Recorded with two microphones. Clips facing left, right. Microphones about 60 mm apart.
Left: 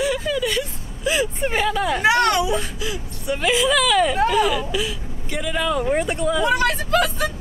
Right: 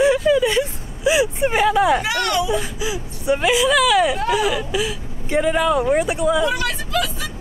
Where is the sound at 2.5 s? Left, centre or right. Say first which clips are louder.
Right 2 dB; centre.